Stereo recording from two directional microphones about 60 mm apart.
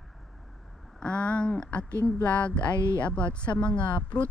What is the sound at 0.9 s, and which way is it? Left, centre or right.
Speech, centre.